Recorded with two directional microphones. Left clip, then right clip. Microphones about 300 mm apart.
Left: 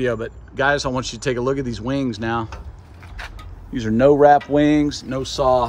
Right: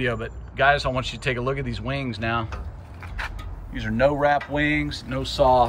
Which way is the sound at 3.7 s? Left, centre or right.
Left.